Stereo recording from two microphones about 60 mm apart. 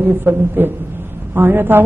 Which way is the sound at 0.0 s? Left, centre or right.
Right.